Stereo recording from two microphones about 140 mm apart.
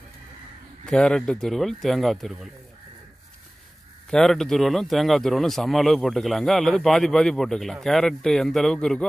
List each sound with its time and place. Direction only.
0.8 s a man's voice: 5° left (ahead or behind)
4.1 s a man's voice: 5° left (ahead or behind)